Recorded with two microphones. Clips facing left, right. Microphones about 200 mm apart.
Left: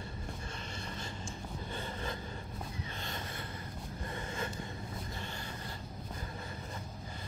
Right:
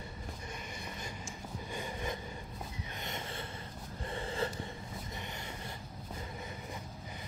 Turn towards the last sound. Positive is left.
turn(degrees=-20)  # may be behind; listen again after turning